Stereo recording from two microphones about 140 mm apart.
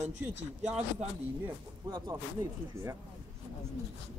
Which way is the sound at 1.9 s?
30° right (ahead or behind).